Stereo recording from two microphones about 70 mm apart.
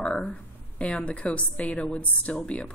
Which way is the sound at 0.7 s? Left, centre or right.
Centre.